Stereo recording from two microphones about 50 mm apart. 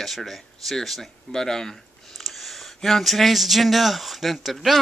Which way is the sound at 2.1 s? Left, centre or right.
Centre.